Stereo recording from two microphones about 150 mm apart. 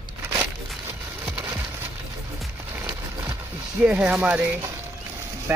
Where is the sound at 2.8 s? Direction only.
20° right (ahead or behind).